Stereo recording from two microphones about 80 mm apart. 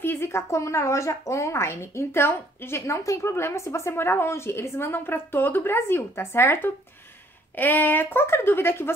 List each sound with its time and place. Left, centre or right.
0.0 s a woman's voice: left